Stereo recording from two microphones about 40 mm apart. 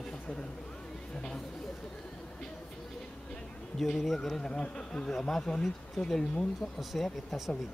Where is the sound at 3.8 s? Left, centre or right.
Centre.